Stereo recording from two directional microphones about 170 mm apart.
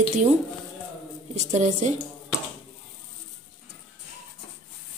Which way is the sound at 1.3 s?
45° right (ahead or behind).